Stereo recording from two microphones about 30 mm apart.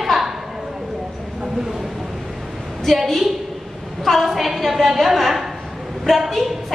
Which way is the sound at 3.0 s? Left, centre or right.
Centre.